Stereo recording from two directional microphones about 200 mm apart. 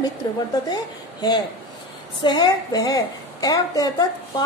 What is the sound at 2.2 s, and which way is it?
A woman's voice, 20° left (ahead or behind).